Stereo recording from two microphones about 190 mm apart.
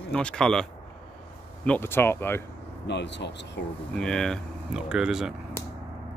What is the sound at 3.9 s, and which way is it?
Speech, 5° left (ahead or behind).